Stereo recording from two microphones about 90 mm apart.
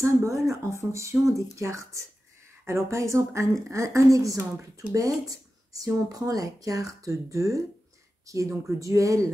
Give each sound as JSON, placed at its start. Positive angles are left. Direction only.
{"t": 0.0, "sound": "speech", "side_deg": -35}